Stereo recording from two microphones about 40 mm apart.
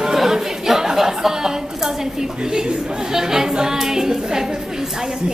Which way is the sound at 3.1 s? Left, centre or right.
Centre.